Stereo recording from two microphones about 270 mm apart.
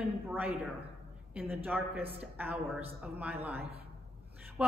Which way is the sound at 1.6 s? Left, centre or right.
Centre.